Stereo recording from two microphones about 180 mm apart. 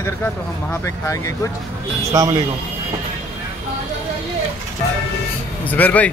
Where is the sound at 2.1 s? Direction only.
20° right (ahead or behind).